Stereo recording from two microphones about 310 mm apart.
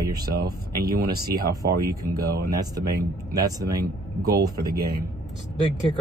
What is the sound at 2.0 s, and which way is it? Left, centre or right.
Speech, centre.